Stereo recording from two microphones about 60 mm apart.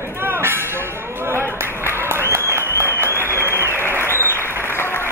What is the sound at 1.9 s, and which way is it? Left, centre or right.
Applause, right.